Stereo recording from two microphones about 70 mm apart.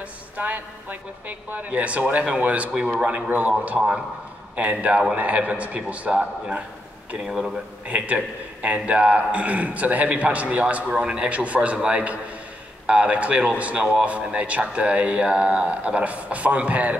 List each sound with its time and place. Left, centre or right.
0.4 s speech: right
7.2 s speech: centre
8.6 s speech: centre